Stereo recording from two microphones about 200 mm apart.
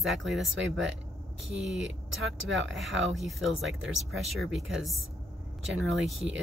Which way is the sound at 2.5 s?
65° right (ahead or behind).